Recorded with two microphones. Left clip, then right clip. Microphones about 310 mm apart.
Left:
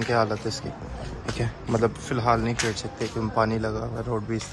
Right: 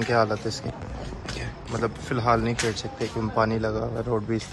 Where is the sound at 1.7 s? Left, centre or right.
Centre.